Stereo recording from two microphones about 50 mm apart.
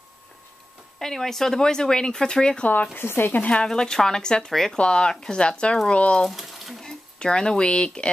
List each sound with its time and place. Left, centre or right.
0.9 s speech: centre
2.6 s speech: left
3.0 s speech: left
3.6 s speech: centre
4.7 s speech: centre
6.1 s speech: centre
6.8 s speech: centre